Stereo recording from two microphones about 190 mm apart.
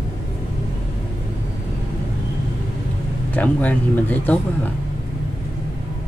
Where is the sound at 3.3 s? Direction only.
10° left (ahead or behind).